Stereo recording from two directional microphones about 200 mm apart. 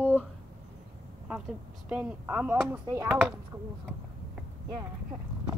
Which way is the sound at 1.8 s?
5° right (ahead or behind).